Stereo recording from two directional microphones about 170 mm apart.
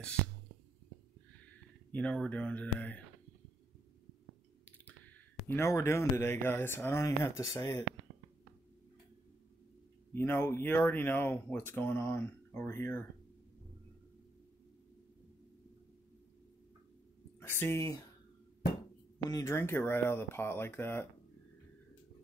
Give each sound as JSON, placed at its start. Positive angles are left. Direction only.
{"t": 1.9, "sound": "speech", "side_deg": 10}
{"t": 4.6, "sound": "speech", "side_deg": 10}
{"t": 10.1, "sound": "speech", "side_deg": 15}
{"t": 17.4, "sound": "speech", "side_deg": 15}
{"t": 19.3, "sound": "speech", "side_deg": 15}